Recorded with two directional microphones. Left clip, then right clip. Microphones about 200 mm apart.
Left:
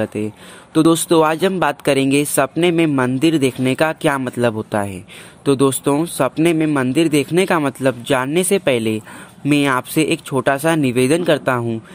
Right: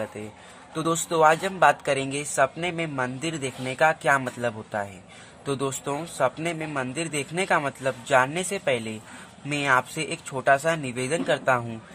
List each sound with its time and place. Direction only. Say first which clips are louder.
0.7 s a man's voice: left 10 dB; 40° left (ahead or behind)